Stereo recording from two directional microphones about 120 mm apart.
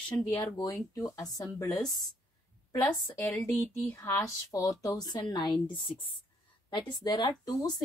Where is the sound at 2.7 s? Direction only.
25° left (ahead or behind).